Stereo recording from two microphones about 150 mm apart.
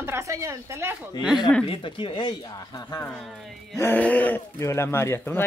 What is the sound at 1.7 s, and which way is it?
Speech, 35° left (ahead or behind).